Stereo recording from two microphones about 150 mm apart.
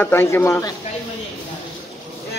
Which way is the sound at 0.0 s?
15° left (ahead or behind).